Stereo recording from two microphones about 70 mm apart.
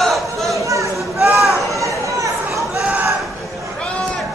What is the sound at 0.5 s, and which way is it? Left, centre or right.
Chatter, right.